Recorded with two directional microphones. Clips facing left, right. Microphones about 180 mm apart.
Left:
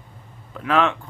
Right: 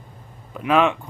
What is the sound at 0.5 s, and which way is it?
Speech, 15° right (ahead or behind).